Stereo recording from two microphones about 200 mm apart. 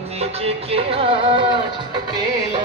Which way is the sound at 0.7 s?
30° right (ahead or behind).